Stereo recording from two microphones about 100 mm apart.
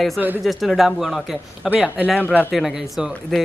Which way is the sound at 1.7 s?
15° right (ahead or behind).